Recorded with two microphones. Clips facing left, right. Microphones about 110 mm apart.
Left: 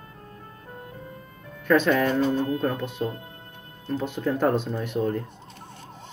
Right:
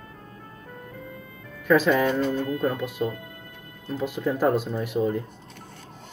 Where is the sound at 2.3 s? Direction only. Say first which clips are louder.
Left 2 dB; 35° left (ahead or behind).